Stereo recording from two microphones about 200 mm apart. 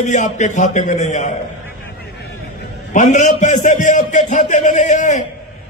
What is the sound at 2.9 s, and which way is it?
A man's voice, 40° left (ahead or behind).